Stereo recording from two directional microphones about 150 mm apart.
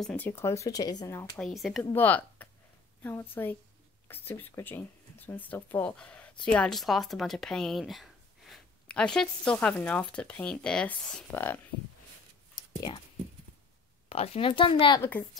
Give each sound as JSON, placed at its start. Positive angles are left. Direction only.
{"t": 0.0, "sound": "speech", "side_deg": 10}
{"t": 1.3, "sound": "speech", "side_deg": 0}
{"t": 2.0, "sound": "speech", "side_deg": 10}
{"t": 12.5, "sound": "whispering", "side_deg": 30}
{"t": 14.0, "sound": "speech", "side_deg": 45}
{"t": 15.0, "sound": "speech", "side_deg": 10}